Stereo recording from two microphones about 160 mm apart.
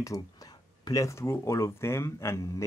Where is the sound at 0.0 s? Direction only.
20° left (ahead or behind).